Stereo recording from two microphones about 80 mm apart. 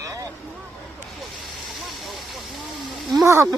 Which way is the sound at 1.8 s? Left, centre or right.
Centre.